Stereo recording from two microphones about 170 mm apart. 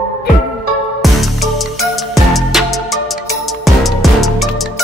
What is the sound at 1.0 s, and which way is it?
Music, centre (ahead or behind).